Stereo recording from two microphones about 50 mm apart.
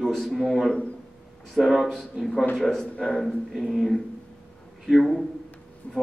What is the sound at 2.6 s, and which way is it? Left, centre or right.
Speech, centre.